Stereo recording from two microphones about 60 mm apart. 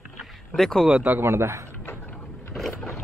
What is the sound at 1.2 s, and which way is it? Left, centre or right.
Speech, right.